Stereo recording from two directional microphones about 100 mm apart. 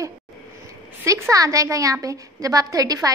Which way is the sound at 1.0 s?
30° right (ahead or behind).